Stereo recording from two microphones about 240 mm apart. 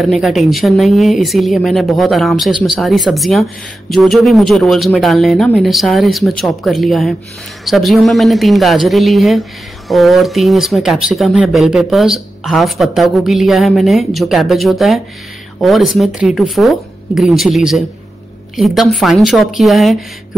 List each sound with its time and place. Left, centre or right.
0.0 s a woman's voice: centre